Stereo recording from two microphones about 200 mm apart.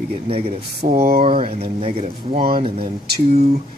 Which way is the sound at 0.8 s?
45° right (ahead or behind).